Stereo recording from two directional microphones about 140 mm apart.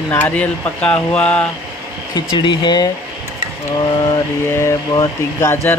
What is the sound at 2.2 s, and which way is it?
Speech, 30° left (ahead or behind).